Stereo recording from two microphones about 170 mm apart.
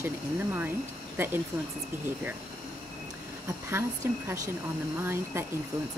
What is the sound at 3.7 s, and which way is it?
Speech, 15° right (ahead or behind).